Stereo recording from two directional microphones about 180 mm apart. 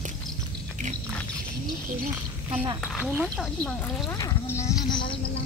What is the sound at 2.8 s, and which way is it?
Speech, 5° left (ahead or behind).